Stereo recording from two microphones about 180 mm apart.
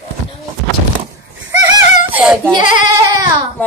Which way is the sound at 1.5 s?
20° right (ahead or behind).